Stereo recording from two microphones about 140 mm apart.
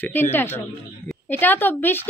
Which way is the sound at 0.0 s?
15° left (ahead or behind).